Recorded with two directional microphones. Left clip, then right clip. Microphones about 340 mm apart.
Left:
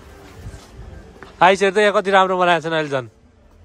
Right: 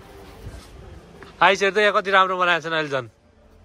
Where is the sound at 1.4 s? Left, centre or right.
Centre.